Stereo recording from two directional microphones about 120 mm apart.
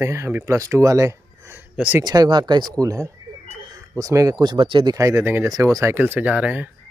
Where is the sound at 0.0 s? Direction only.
20° right (ahead or behind).